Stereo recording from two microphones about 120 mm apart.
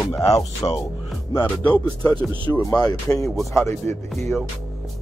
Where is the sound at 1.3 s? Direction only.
10° left (ahead or behind).